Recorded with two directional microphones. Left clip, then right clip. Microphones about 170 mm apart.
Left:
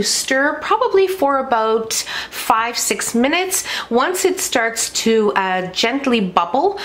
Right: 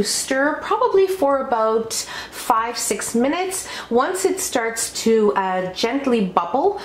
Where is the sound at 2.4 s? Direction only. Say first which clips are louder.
Left 3 dB; 30° left (ahead or behind).